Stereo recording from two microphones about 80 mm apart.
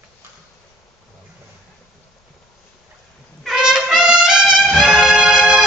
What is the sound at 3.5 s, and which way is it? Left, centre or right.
Trumpet, centre.